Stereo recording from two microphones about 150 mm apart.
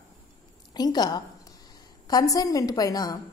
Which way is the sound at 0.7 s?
25° left (ahead or behind).